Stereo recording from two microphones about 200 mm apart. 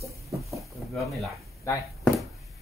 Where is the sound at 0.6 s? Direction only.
Centre (ahead or behind).